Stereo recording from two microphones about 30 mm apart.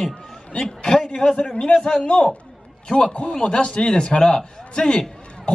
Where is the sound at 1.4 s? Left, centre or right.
Left.